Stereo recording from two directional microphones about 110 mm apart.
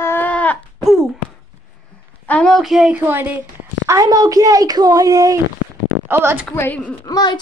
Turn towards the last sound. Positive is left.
turn(degrees=35)  # may be behind; listen again after turning